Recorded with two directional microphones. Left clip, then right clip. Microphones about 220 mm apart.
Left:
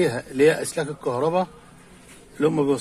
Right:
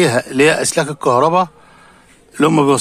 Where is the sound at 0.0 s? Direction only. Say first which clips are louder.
Right 6 dB; 40° right (ahead or behind).